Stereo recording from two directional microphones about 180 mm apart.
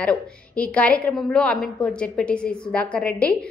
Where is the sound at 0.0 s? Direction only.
5° left (ahead or behind).